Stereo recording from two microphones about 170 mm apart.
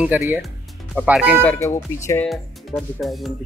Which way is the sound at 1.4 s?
15° left (ahead or behind).